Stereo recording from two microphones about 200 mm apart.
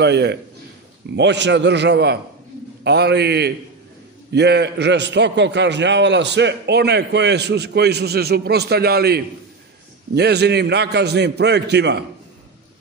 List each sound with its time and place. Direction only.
0.0 s a man's voice: 55° right (ahead or behind)